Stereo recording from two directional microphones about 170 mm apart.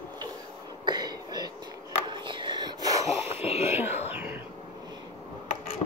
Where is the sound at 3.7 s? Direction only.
10° right (ahead or behind).